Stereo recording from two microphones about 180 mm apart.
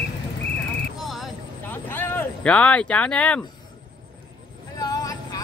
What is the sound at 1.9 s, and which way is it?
Speech, 10° left (ahead or behind).